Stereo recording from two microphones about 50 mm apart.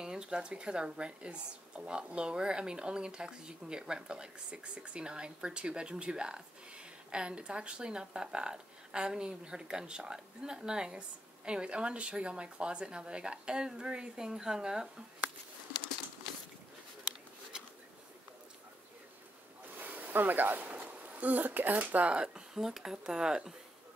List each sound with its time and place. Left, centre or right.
0.0 s speech: centre
19.8 s speech: right
22.1 s speech: centre